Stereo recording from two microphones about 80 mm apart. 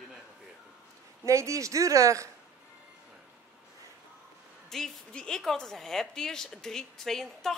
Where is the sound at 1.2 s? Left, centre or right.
Right.